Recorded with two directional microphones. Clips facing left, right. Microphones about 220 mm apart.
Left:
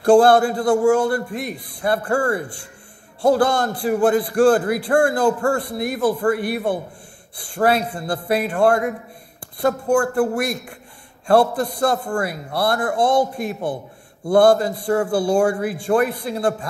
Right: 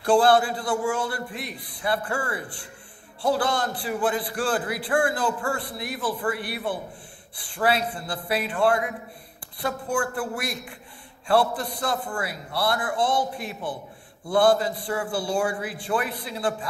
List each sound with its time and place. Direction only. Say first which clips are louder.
0.0 s a man's voice: left 6 dB; 45° left (ahead or behind)